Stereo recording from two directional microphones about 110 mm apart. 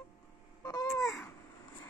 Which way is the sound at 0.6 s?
35° left (ahead or behind).